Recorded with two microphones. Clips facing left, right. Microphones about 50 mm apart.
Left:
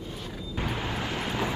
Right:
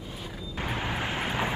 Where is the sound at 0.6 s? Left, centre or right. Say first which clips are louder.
Right 1 dB; centre.